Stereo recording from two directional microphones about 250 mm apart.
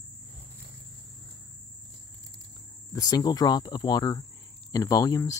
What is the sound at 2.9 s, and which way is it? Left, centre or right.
Speech, centre.